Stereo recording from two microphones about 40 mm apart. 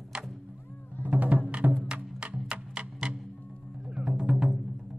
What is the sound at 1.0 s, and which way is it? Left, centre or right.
Music, right.